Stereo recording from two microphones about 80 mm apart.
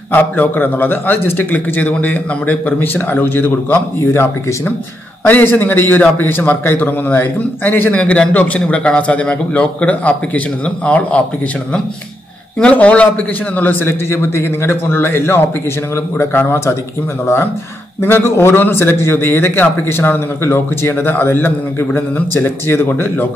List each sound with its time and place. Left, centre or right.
0.1 s a man's voice: left
12.5 s a man's voice: centre; by 16.7 s left
18.0 s a man's voice: left